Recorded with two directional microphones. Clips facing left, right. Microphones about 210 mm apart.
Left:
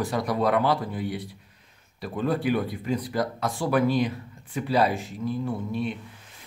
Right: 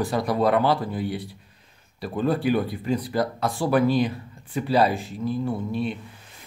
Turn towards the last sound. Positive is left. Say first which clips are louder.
# right 2 dB
turn(degrees=-30)  # may be behind; listen again after turning